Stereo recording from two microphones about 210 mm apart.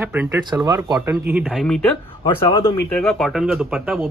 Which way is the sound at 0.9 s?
5° right (ahead or behind).